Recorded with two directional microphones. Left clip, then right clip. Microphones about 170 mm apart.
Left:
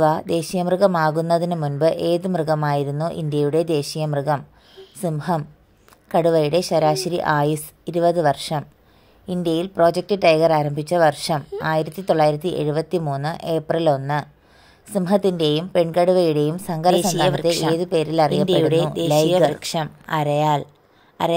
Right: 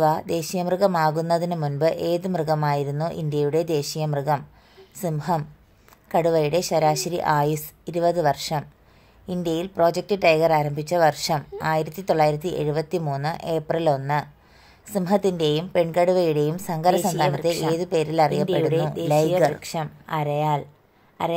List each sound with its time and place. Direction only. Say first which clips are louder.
0.0 s a woman's voice: left 3 dB; 25° left (ahead or behind)